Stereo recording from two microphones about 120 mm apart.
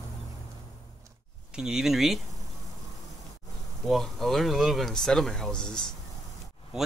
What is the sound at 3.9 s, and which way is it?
Speech, centre (ahead or behind).